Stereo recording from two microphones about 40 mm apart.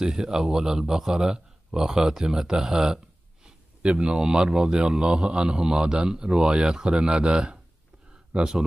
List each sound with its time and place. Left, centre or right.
0.0 s a man's voice: centre